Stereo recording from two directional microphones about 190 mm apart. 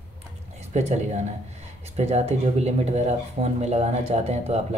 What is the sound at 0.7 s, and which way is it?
Speech, 35° right (ahead or behind).